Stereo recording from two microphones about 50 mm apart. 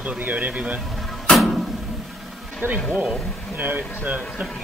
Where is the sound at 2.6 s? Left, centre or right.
Right.